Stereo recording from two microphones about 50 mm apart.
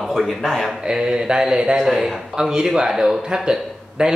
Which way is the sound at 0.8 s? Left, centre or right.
Centre.